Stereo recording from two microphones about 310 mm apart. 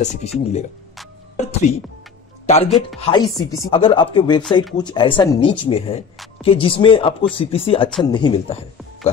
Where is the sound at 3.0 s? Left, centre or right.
Centre.